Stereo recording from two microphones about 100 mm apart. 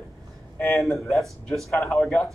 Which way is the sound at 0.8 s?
Centre (ahead or behind).